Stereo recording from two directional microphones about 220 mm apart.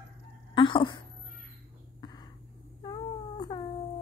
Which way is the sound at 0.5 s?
20° left (ahead or behind).